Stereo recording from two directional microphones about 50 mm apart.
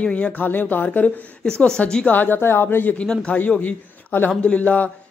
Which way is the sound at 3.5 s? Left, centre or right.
Left.